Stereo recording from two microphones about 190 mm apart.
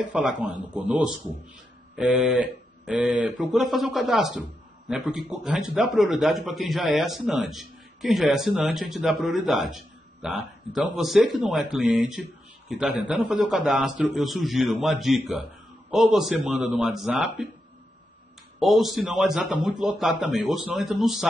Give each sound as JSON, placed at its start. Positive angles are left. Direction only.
{"t": 0.0, "sound": "a man's voice", "side_deg": -5}
{"t": 18.6, "sound": "a man's voice", "side_deg": 0}